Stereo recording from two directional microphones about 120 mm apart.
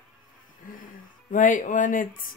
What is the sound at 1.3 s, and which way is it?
Speech, 90° left.